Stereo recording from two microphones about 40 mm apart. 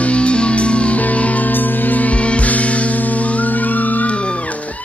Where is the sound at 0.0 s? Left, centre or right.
Left.